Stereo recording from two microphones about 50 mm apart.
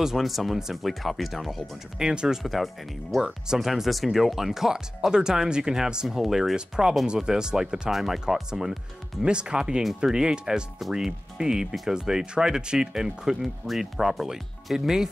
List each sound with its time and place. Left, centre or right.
0.0 s speech: centre
2.0 s speech: centre
6.0 s speech: centre
6.5 s speech: centre